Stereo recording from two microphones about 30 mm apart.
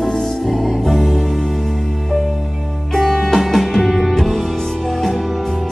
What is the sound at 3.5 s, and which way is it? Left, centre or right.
Music, centre.